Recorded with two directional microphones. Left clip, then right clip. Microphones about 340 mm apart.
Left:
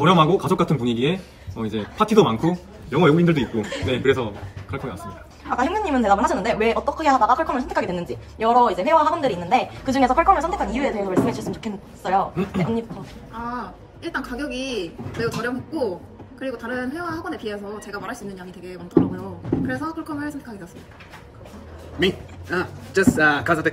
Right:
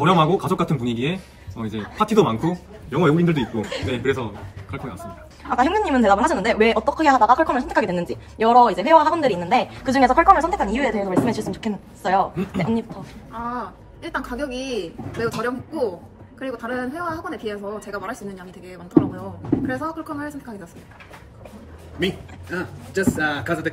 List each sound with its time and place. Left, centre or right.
0.0 s speech: centre
5.5 s speech: right
13.3 s speech: centre
19.7 s speech: centre
22.0 s a man's voice: centre